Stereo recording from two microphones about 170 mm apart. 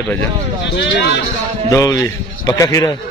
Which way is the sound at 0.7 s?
90° left.